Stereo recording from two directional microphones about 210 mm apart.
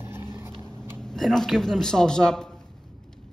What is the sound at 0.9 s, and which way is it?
A man's voice, 5° left (ahead or behind).